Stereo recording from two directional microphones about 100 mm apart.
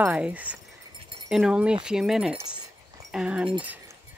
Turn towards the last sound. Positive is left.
turn(degrees=-10)  # may be behind; listen again after turning